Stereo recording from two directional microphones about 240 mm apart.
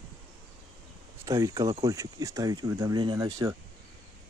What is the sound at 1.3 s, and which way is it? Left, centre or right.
Speech, centre.